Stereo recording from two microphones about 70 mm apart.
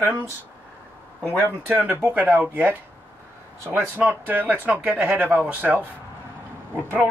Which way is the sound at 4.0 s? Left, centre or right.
Right.